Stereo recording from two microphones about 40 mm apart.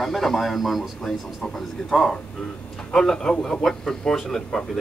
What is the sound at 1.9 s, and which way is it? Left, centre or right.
Speech, centre.